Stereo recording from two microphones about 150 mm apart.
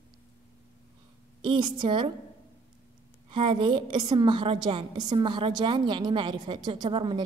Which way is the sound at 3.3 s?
35° right (ahead or behind).